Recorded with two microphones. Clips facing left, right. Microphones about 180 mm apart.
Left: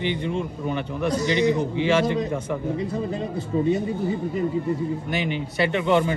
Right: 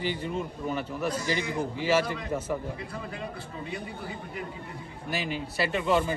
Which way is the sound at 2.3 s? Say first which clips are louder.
Left 3 dB; 5° right (ahead or behind).